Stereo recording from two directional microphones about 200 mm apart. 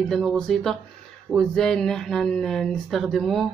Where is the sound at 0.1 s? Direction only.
Centre (ahead or behind).